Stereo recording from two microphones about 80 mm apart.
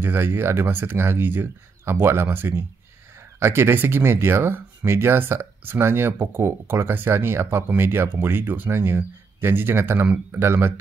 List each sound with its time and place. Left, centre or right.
0.0 s speech: right